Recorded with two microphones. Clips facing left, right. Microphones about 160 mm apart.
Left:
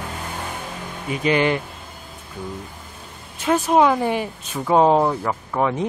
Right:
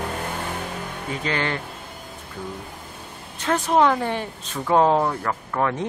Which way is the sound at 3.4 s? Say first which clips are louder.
Left 2 dB; 10° left (ahead or behind).